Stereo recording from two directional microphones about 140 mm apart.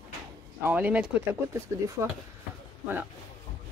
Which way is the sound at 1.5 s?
20° right (ahead or behind).